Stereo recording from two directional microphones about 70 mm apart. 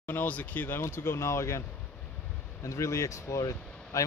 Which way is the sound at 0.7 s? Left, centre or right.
Left.